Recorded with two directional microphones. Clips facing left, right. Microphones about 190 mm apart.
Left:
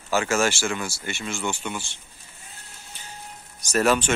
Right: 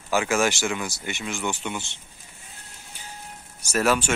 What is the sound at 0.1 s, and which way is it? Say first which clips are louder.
Speech: even; 15° right (ahead or behind).